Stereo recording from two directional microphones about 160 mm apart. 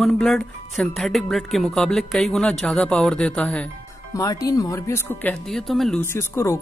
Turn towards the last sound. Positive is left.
turn(degrees=15)  # may be behind; listen again after turning